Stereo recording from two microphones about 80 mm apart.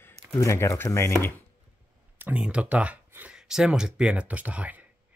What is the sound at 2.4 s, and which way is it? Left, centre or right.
Speech, centre.